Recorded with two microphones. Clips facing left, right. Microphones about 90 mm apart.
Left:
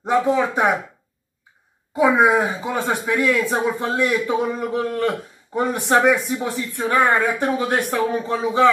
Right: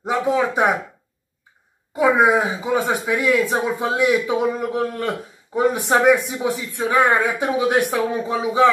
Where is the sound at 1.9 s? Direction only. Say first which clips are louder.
Even; centre (ahead or behind).